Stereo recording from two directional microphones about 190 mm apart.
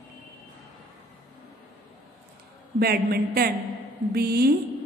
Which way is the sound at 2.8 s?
55° right (ahead or behind).